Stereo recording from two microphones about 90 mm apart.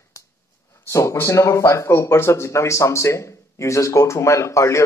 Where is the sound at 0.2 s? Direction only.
40° left (ahead or behind).